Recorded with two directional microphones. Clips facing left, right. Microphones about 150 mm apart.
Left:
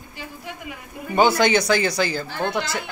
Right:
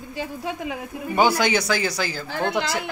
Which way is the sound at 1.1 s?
10° right (ahead or behind).